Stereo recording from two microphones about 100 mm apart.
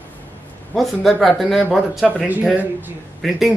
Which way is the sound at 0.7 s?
Centre (ahead or behind).